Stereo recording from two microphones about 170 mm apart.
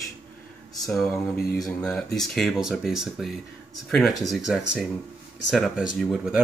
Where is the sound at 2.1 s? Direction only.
Centre (ahead or behind).